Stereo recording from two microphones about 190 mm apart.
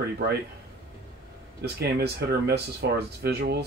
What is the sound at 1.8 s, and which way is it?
Speech, 55° right (ahead or behind).